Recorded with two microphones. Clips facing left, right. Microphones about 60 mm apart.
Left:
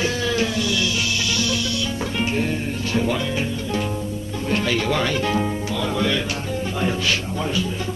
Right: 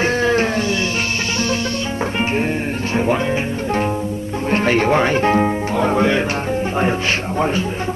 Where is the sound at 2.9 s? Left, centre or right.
Right.